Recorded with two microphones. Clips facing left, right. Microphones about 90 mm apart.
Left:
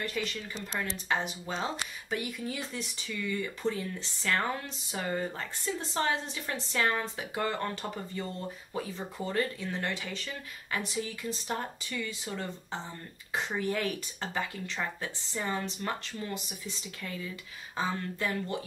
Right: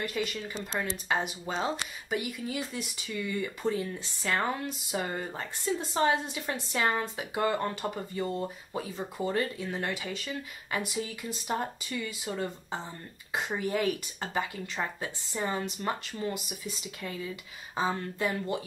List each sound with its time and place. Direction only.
0.0 s speech: 10° right (ahead or behind)